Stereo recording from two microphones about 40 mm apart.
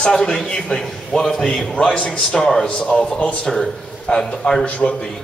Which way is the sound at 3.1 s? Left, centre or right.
Centre.